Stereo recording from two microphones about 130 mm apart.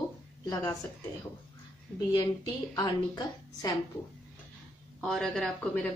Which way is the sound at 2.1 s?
30° left (ahead or behind).